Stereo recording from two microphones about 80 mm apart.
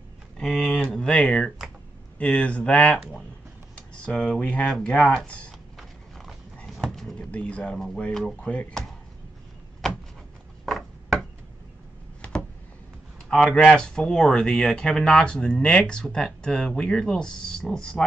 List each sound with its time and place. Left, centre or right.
0.4 s speech: centre
4.6 s speech: centre
5.8 s horse: centre
7.2 s speech: centre
10.6 s wood: centre
12.2 s a sound: centre
13.3 s speech: centre